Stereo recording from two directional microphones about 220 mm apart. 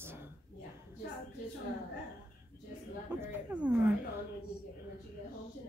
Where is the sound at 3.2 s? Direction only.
5° right (ahead or behind).